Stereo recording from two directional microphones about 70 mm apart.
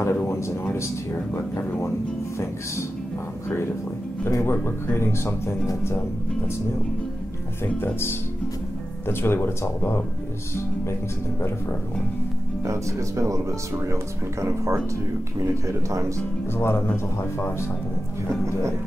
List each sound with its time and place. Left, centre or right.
0.0 s a sound: left
0.7 s speech: left
4.3 s speech: left
9.0 s speech: left
12.6 s speech: right
14.4 s speech: right
16.5 s speech: left